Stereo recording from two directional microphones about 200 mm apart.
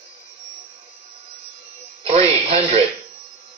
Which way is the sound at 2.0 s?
30° right (ahead or behind).